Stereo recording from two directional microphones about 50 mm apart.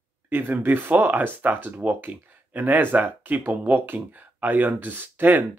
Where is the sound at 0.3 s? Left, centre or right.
Right.